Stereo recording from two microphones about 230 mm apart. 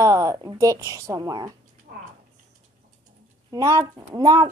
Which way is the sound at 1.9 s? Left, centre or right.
Right.